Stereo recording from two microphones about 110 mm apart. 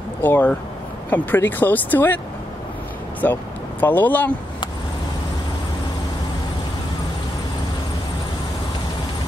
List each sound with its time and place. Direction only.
0.2 s speech: 20° left (ahead or behind)
3.2 s speech: 20° left (ahead or behind)